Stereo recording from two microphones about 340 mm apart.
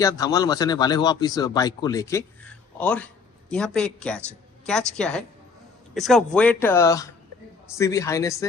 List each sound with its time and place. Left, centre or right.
0.0 s speech: centre